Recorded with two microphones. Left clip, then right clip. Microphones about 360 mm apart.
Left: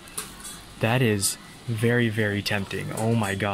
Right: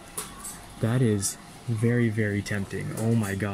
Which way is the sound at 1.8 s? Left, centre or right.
Left.